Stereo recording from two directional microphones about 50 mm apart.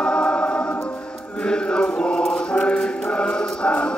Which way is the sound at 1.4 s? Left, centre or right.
Centre.